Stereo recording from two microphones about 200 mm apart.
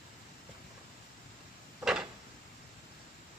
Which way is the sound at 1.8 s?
5° right (ahead or behind).